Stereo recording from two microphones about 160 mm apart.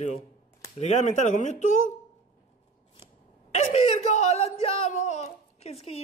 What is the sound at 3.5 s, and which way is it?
Speech, 40° left (ahead or behind).